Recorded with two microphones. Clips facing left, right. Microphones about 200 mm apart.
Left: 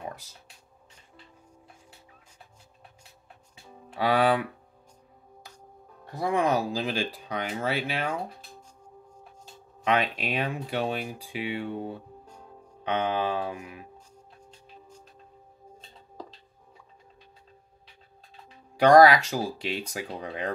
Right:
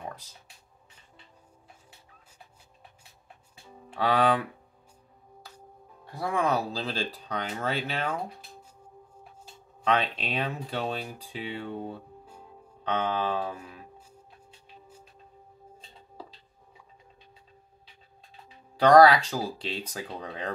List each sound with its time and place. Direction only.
3.9 s speech: 10° left (ahead or behind)
6.1 s speech: 15° left (ahead or behind)
9.8 s speech: 10° left (ahead or behind)
18.8 s speech: 10° left (ahead or behind)